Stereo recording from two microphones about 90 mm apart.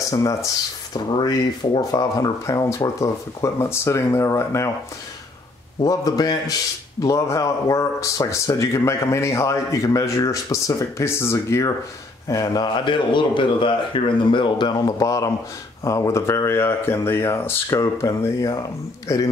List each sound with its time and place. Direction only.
0.2 s speech: 35° left (ahead or behind)
0.9 s a man's voice: 50° left (ahead or behind); by 4.6 s 35° left (ahead or behind)
5.9 s a man's voice: 45° left (ahead or behind)
12.3 s a man's voice: 45° left (ahead or behind)
12.7 s speech: 65° left (ahead or behind); by 19.2 s 40° left (ahead or behind)